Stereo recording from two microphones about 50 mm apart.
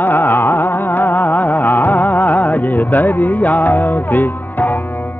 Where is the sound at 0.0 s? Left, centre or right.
Left.